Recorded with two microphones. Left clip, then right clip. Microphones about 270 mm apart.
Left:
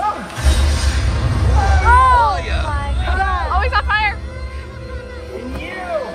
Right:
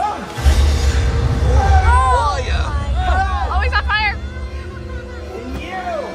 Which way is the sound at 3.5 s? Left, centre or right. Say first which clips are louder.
Left 2 dB; centre.